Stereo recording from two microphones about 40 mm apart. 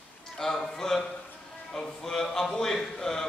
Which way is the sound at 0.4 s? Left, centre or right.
Centre.